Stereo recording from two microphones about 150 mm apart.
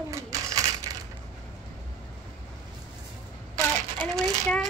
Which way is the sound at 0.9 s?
25° right (ahead or behind).